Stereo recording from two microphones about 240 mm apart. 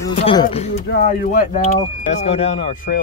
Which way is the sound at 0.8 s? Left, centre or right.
Left.